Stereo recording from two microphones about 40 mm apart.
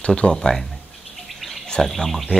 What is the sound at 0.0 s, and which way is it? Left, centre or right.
Speech, left.